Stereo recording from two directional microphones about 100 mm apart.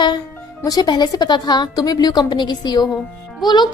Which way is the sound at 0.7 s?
40° left (ahead or behind).